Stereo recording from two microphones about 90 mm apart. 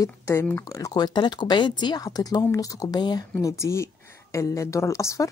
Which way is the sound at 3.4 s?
35° left (ahead or behind).